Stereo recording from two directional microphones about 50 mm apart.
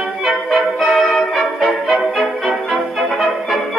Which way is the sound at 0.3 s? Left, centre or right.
Centre.